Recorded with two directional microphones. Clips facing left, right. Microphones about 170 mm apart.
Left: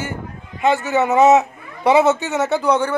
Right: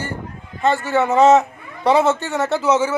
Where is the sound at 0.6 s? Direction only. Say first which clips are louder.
Left 1 dB; 20° left (ahead or behind).